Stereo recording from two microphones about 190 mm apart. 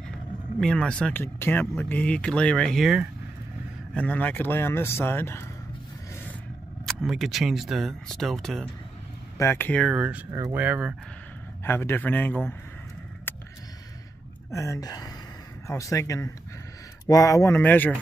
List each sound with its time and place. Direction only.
0.6 s speech: 5° left (ahead or behind)
3.9 s speech: 10° left (ahead or behind)
6.9 s speech: centre (ahead or behind)
9.8 s speech: 5° right (ahead or behind)
11.6 s speech: 10° left (ahead or behind)
13.3 s a sound: 10° left (ahead or behind)
14.5 s speech: 15° left (ahead or behind)